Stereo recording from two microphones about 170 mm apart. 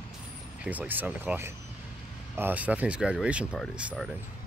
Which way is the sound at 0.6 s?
10° right (ahead or behind).